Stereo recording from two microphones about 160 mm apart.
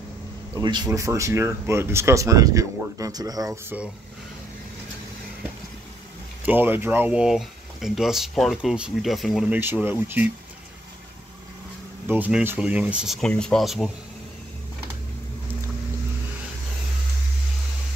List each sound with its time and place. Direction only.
0.6 s speech: 25° right (ahead or behind); by 3.9 s 10° right (ahead or behind)
6.4 s speech: 10° right (ahead or behind)
9.6 s speech: 15° right (ahead or behind)
12.1 s speech: 10° right (ahead or behind)